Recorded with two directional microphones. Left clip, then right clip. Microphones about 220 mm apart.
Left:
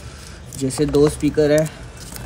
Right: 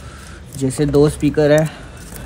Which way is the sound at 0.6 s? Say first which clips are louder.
Right 2 dB; 20° right (ahead or behind).